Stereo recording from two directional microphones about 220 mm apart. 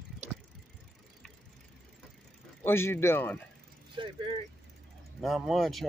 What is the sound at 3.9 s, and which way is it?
Vehicle, 20° right (ahead or behind).